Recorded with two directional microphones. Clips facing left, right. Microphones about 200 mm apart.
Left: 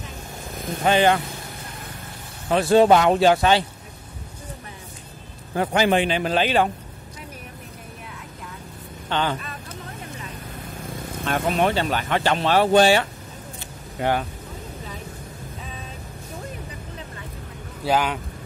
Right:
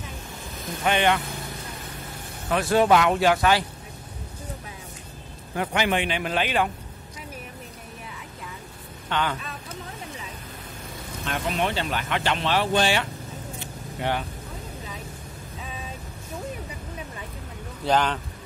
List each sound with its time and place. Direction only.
0.8 s speech: 35° left (ahead or behind)
2.5 s speech: 30° left (ahead or behind)
5.6 s speech: 35° left (ahead or behind)
9.1 s speech: 30° left (ahead or behind)
11.2 s speech: 50° left (ahead or behind)
17.8 s speech: 10° left (ahead or behind)